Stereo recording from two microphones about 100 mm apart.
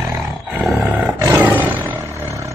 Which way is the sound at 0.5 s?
10° right (ahead or behind).